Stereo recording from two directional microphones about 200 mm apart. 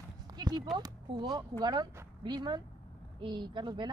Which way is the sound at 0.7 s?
20° right (ahead or behind).